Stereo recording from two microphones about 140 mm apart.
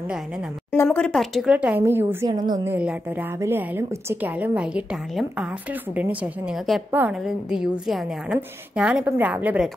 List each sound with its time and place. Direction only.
0.8 s a woman's voice: 5° left (ahead or behind)
1.5 s a woman's voice: 10° right (ahead or behind)
2.2 s a woman's voice: 25° right (ahead or behind)
2.6 s a woman's voice: 10° right (ahead or behind)